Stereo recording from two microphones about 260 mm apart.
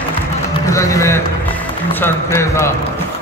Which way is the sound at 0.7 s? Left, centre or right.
Centre.